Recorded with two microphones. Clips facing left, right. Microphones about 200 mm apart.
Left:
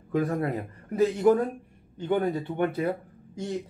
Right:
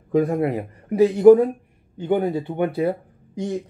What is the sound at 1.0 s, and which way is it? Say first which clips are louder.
Speech: right 9 dB; 30° right (ahead or behind).